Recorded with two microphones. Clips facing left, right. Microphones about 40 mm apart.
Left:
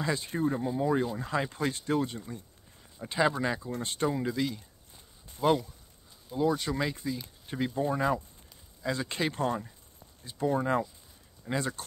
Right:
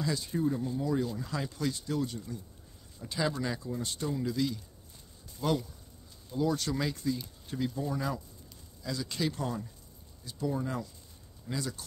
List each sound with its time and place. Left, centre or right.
0.0 s speech: left
3.8 s speech: left; by 7.5 s centre
7.5 s speech: left